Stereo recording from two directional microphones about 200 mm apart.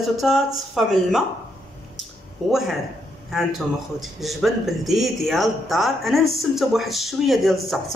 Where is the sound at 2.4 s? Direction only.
Centre (ahead or behind).